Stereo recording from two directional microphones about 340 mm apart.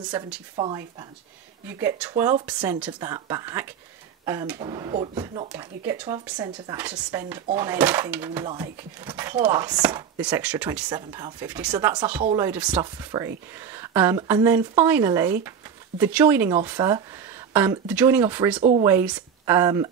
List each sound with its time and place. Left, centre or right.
0.0 s speech: centre
18.6 s speech: centre
18.9 s speech: centre